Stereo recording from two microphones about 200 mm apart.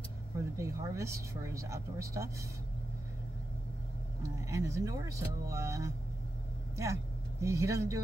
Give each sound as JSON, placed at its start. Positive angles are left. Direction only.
{"t": 0.6, "sound": "a sound", "side_deg": -15}
{"t": 1.5, "sound": "speech", "side_deg": -15}
{"t": 4.5, "sound": "speech", "side_deg": -15}